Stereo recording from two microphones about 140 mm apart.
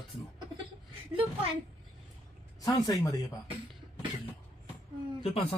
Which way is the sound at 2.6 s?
25° left (ahead or behind).